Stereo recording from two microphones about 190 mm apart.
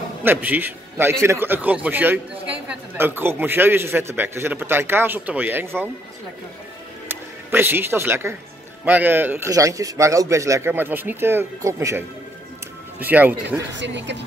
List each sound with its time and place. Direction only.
0.2 s a man's voice: 10° right (ahead or behind)
7.1 s a man's voice: 10° right (ahead or behind)
13.0 s a man's voice: 10° right (ahead or behind)
13.7 s speech: 70° right (ahead or behind)